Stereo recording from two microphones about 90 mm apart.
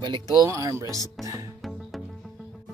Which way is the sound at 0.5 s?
35° right (ahead or behind).